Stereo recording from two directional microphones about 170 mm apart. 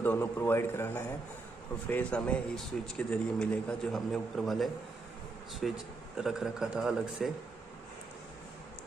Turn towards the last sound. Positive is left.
turn(degrees=-5)  # may be behind; listen again after turning